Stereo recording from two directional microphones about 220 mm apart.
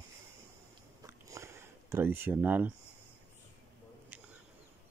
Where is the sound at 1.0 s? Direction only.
15° right (ahead or behind).